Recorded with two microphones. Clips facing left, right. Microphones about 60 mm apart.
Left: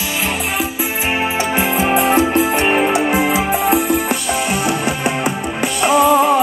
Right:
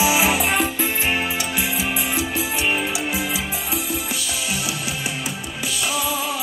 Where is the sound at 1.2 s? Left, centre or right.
Left.